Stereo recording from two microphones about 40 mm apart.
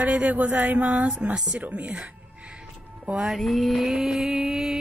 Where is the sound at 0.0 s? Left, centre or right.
Right.